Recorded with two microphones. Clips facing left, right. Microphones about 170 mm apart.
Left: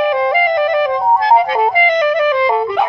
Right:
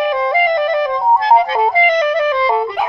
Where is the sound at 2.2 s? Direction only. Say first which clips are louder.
Left 2 dB; 25° right (ahead or behind).